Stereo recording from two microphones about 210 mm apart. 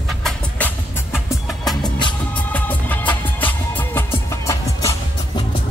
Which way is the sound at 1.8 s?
20° left (ahead or behind).